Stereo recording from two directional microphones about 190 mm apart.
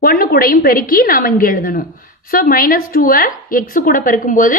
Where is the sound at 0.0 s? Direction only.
50° left (ahead or behind).